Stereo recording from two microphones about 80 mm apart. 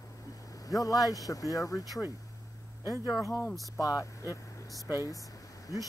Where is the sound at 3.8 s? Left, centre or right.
Left.